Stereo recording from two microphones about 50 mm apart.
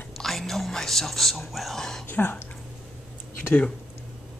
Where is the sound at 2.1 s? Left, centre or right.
Left.